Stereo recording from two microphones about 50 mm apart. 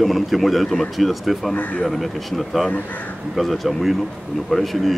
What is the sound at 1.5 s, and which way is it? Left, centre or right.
Speech, left.